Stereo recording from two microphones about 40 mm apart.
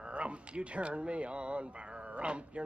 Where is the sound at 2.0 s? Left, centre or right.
Right.